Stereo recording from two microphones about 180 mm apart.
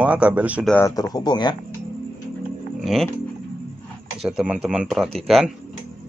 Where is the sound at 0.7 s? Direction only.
10° left (ahead or behind).